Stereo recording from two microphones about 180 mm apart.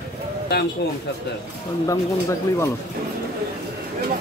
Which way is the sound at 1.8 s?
20° left (ahead or behind).